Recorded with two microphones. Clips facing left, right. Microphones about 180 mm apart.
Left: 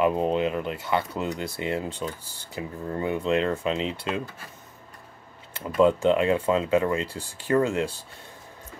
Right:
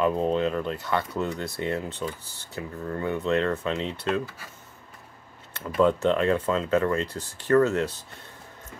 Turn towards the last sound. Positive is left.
turn(degrees=10)  # may be behind; listen again after turning